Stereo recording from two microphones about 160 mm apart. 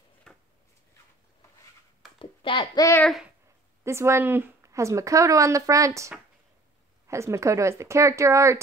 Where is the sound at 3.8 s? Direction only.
15° right (ahead or behind).